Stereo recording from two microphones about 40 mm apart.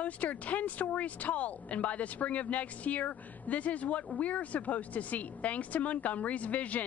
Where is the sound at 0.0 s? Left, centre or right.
Left.